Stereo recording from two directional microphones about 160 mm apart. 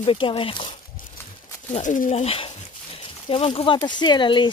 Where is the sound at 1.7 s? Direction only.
50° left (ahead or behind).